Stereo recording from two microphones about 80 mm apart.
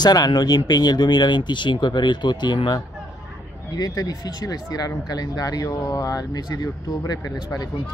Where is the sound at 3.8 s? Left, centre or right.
Left.